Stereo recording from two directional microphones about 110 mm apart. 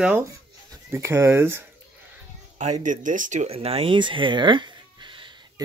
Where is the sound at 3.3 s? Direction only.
70° right (ahead or behind); by 5.3 s 45° right (ahead or behind).